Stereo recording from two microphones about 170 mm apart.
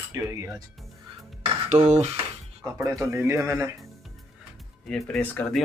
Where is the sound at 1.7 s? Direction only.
40° right (ahead or behind).